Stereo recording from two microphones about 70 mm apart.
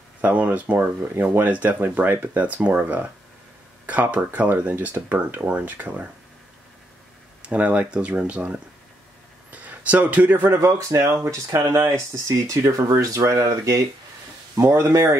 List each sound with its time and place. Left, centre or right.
0.2 s speech: right
7.4 s speech: centre
10.6 s speech: right
12.4 s speech: right